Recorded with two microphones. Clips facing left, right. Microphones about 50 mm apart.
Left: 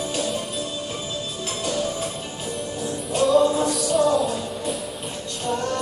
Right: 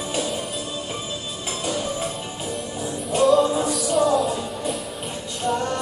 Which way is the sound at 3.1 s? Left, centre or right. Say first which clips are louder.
Right 1 dB; centre.